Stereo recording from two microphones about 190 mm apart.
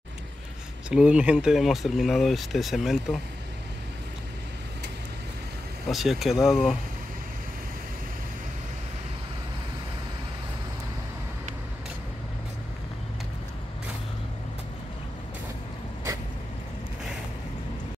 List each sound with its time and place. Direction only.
0.8 s speech: 5° right (ahead or behind)
5.9 s speech: centre (ahead or behind)